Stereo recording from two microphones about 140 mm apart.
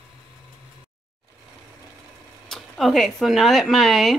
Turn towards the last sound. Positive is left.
turn(degrees=0)  # may be behind; listen again after turning